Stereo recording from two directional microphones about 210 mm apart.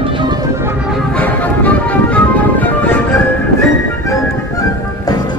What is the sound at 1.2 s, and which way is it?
Music, 5° left (ahead or behind).